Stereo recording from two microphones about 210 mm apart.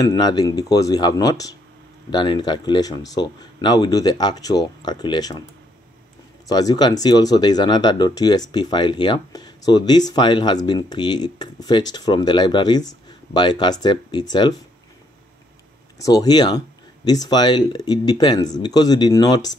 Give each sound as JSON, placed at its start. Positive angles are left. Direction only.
{"t": 0.0, "sound": "speech", "side_deg": 20}
{"t": 6.4, "sound": "speech", "side_deg": 20}
{"t": 16.0, "sound": "speech", "side_deg": 20}